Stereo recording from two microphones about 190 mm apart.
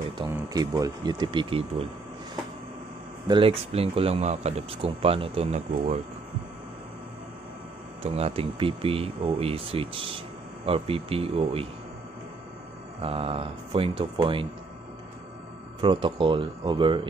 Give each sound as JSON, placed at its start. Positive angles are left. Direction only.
{"t": 0.3, "sound": "speech", "side_deg": -20}
{"t": 3.3, "sound": "speech", "side_deg": -30}
{"t": 8.0, "sound": "speech", "side_deg": -30}
{"t": 13.0, "sound": "speech", "side_deg": -30}
{"t": 15.8, "sound": "speech", "side_deg": -25}